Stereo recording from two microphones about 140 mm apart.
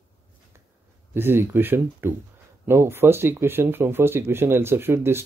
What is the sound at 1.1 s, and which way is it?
Speech, 15° right (ahead or behind).